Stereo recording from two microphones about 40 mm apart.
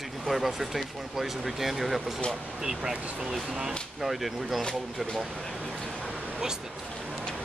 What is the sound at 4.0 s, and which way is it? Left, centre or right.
Speech, centre.